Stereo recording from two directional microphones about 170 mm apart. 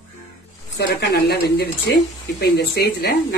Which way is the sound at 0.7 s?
70° left (ahead or behind).